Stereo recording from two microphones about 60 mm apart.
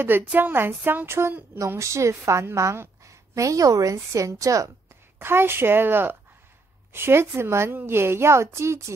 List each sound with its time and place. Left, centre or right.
0.3 s a woman's voice: right
1.8 s a woman's voice: right
5.2 s a woman's voice: right